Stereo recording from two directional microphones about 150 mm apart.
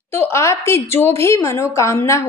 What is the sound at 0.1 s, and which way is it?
A woman's voice, 15° left (ahead or behind).